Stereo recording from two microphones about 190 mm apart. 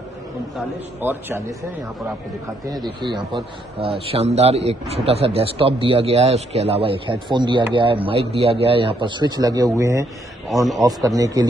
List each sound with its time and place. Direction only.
1.0 s speech: 10° right (ahead or behind)
3.8 s a man's voice: 30° right (ahead or behind); by 10.0 s 15° right (ahead or behind)
10.5 s a man's voice: centre (ahead or behind)
10.8 s speech: 20° right (ahead or behind)